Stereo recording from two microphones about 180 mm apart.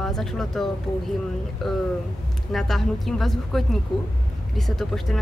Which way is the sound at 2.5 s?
Centre (ahead or behind).